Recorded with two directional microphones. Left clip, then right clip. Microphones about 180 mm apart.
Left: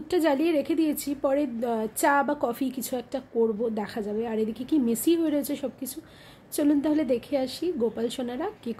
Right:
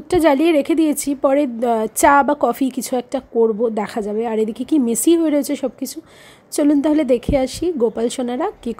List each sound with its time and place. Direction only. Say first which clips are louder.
0.1 s a woman's voice: right 10 dB; 30° right (ahead or behind)